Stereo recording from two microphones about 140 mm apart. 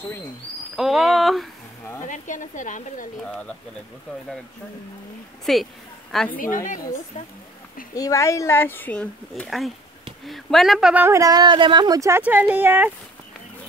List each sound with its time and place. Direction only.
0.7 s a woman's voice: centre (ahead or behind)
2.0 s speech: 65° left (ahead or behind)
5.4 s a woman's voice: centre (ahead or behind)
6.3 s a woman's voice: 75° left (ahead or behind)
7.2 s speech: 55° left (ahead or behind)
7.9 s speech: 25° left (ahead or behind)
9.3 s a woman's voice: centre (ahead or behind)
11.1 s speech: 25° right (ahead or behind)
12.2 s speech: 10° right (ahead or behind)